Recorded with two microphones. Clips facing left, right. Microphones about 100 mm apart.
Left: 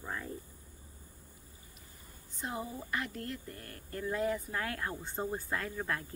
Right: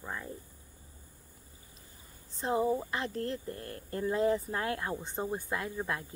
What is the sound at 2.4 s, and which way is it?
Speech, 30° right (ahead or behind).